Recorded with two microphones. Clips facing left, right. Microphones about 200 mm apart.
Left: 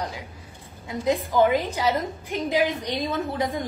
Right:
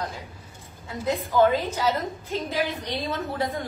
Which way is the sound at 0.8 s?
15° left (ahead or behind).